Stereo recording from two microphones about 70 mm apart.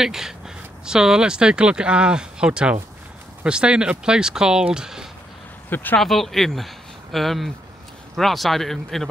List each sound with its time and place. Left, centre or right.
0.0 s speech: centre
5.7 s speech: left
5.9 s speech: centre